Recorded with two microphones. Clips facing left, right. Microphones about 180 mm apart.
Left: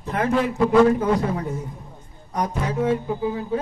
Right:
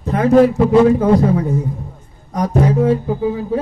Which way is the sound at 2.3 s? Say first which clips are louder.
Right 9 dB; 40° right (ahead or behind).